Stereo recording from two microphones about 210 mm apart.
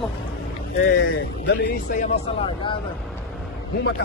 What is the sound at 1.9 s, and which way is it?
Speech, 35° left (ahead or behind).